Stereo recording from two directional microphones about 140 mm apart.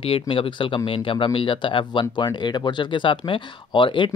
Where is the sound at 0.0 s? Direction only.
40° left (ahead or behind).